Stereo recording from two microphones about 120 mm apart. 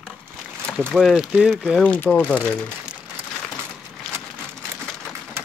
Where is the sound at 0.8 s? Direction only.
Centre (ahead or behind).